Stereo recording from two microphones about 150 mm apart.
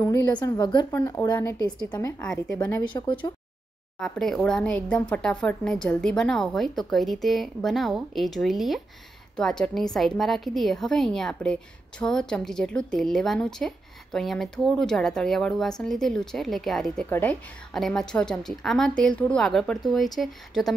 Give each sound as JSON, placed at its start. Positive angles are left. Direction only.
{"t": 0.0, "sound": "a woman's voice", "side_deg": 25}
{"t": 2.2, "sound": "a woman's voice", "side_deg": 5}
{"t": 2.9, "sound": "a woman's voice", "side_deg": 20}
{"t": 4.0, "sound": "speech", "side_deg": 5}